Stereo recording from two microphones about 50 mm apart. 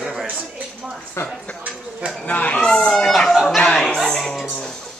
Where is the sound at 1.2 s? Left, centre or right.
Left.